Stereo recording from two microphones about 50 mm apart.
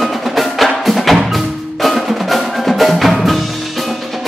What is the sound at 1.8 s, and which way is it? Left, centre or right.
Percussion, centre.